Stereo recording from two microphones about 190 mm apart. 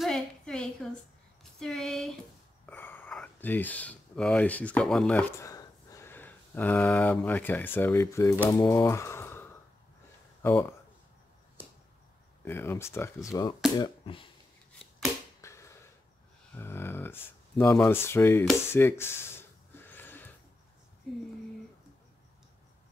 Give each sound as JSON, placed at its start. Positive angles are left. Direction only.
{"t": 0.0, "sound": "a sound", "side_deg": 5}
{"t": 1.6, "sound": "speech", "side_deg": 0}
{"t": 12.4, "sound": "speech", "side_deg": 10}
{"t": 15.4, "sound": "finger snapping", "side_deg": 15}
{"t": 16.5, "sound": "speech", "side_deg": 10}
{"t": 18.7, "sound": "a sound", "side_deg": 10}